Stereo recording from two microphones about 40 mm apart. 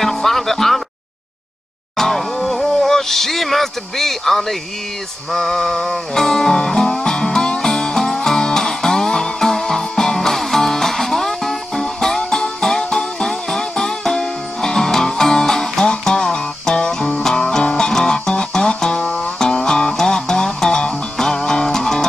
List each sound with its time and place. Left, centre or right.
0.0 s music: centre
2.0 s music: centre